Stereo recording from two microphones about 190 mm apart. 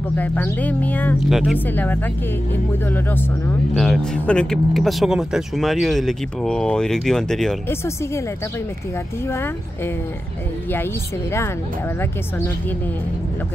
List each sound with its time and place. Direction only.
0.2 s speech: 10° left (ahead or behind)
1.7 s speech: 10° left (ahead or behind)
3.7 s speech: centre (ahead or behind)